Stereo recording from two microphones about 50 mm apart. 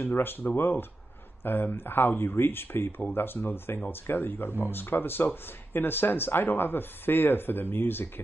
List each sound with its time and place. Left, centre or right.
0.0 s speech: left